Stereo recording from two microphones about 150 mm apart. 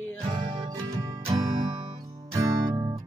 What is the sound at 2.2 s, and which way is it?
Music, 20° right (ahead or behind).